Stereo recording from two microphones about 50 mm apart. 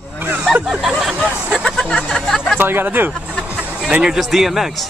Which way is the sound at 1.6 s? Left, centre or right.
Centre.